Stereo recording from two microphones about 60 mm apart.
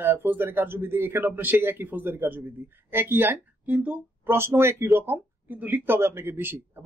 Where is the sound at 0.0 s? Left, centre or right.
Right.